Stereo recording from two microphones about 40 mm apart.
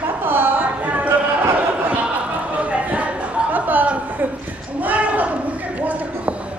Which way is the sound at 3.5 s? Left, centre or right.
Right.